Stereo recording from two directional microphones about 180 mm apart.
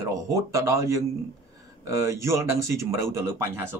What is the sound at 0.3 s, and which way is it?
Speech, 15° right (ahead or behind).